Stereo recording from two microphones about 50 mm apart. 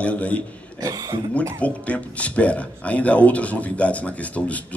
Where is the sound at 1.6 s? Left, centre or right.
Left.